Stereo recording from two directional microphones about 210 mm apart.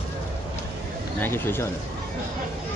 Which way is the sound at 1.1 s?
10° left (ahead or behind).